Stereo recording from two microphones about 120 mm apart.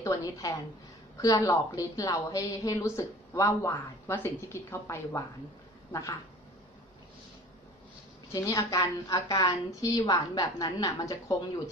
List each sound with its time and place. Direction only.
0.0 s a woman's voice: 30° left (ahead or behind)
8.3 s a woman's voice: 25° left (ahead or behind)